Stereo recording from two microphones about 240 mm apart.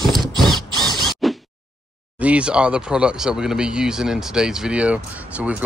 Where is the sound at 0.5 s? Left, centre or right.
Centre.